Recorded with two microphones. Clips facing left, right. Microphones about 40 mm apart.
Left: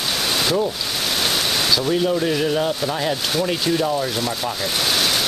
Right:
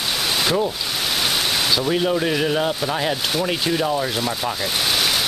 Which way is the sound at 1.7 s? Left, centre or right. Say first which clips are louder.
Left 1 dB; centre.